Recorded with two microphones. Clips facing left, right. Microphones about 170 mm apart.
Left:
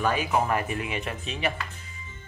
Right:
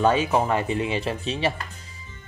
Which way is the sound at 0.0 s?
25° right (ahead or behind).